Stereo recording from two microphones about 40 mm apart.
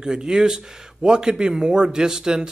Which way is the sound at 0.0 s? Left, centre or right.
Centre.